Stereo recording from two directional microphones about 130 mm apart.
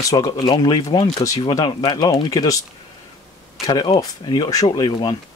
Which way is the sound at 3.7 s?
35° left (ahead or behind).